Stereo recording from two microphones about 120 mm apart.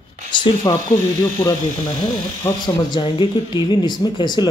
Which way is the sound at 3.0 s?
40° left (ahead or behind).